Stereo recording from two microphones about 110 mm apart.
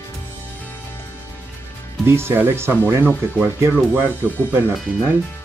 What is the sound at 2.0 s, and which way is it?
Speech, 20° right (ahead or behind).